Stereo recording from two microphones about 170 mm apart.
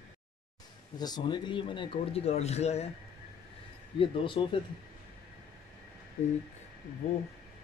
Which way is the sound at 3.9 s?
30° left (ahead or behind).